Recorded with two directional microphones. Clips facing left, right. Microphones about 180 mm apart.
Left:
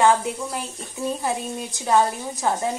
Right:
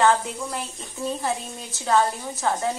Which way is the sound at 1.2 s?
15° left (ahead or behind).